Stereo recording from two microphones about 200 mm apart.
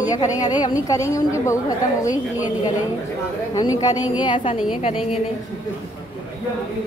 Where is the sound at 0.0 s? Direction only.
20° left (ahead or behind).